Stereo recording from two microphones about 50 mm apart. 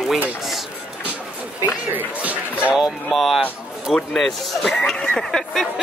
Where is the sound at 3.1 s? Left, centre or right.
Centre.